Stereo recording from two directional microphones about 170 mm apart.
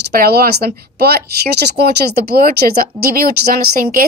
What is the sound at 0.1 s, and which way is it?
Speech, 65° right (ahead or behind).